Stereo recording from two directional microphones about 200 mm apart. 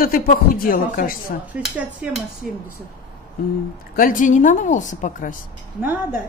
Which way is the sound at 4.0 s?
40° left (ahead or behind).